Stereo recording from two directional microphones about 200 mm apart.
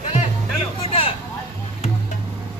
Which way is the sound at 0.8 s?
30° left (ahead or behind).